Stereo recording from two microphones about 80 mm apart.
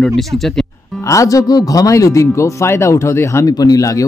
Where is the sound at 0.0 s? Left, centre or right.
Centre.